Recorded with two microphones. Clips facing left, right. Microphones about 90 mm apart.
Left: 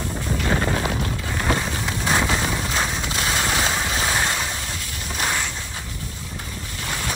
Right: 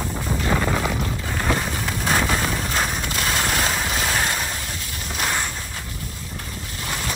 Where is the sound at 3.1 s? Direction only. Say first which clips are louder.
Left 1 dB; 20° left (ahead or behind).